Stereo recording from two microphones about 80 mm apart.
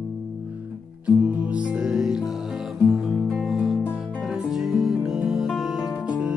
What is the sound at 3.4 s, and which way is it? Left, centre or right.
Music, centre.